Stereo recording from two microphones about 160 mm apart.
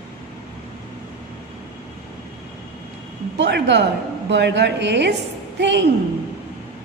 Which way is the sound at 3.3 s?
90° right.